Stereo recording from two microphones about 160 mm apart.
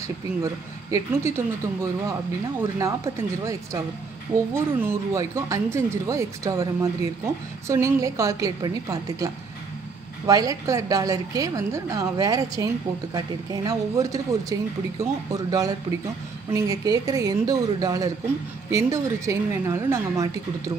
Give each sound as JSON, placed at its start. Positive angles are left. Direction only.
{"t": 0.4, "sound": "speech", "side_deg": -20}